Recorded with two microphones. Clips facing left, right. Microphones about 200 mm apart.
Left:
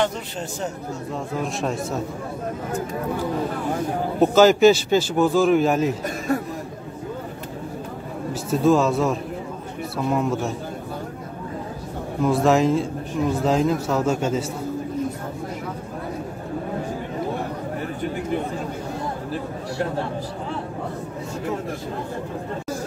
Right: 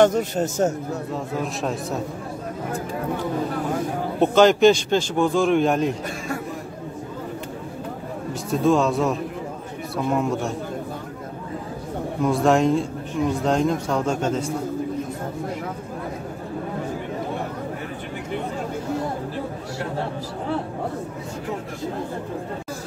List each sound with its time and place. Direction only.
0.0 s speech: 45° right (ahead or behind)
1.4 s a man's voice: centre (ahead or behind)
4.2 s a man's voice: 5° left (ahead or behind)
8.3 s a man's voice: centre (ahead or behind)
12.2 s a man's voice: centre (ahead or behind)